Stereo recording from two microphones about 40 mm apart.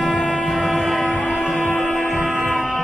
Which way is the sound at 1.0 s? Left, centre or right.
Centre.